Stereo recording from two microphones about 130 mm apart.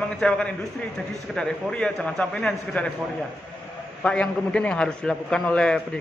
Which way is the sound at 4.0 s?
10° left (ahead or behind).